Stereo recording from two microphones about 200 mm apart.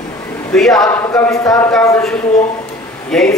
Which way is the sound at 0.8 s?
15° left (ahead or behind).